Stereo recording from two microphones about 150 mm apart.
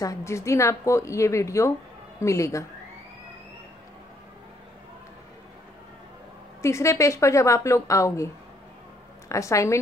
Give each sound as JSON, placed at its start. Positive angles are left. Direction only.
{"t": 0.0, "sound": "speech", "side_deg": 20}
{"t": 6.6, "sound": "speech", "side_deg": 20}
{"t": 9.3, "sound": "speech", "side_deg": 20}